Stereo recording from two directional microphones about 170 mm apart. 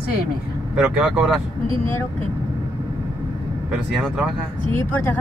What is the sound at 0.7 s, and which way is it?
Speech, 5° right (ahead or behind).